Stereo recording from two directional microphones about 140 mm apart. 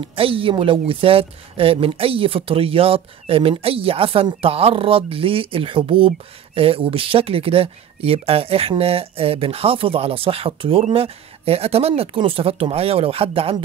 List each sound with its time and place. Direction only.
0.0 s speech: 40° right (ahead or behind)